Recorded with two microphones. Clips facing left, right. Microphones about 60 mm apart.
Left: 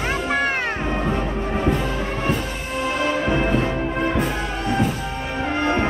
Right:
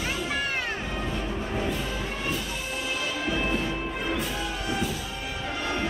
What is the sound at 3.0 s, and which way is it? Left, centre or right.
Music, left.